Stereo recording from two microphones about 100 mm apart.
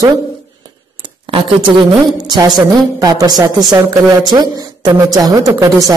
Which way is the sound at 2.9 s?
40° right (ahead or behind).